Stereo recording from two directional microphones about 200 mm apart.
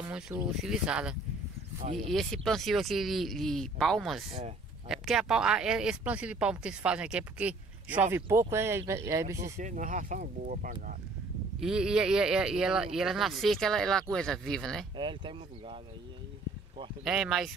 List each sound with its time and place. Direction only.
0.1 s speech: 5° right (ahead or behind)
4.3 s speech: 30° right (ahead or behind)
4.8 s speech: centre (ahead or behind)
9.6 s speech: 40° right (ahead or behind)
11.6 s speech: 5° right (ahead or behind)
15.0 s speech: 25° right (ahead or behind)
17.0 s speech: centre (ahead or behind)